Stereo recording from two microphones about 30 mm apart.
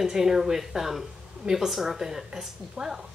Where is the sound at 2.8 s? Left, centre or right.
Right.